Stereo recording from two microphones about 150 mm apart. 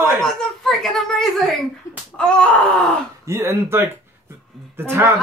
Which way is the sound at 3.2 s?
15° right (ahead or behind).